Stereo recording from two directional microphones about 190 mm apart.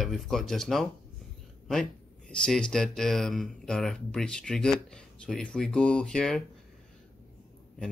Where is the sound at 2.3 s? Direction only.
5° left (ahead or behind).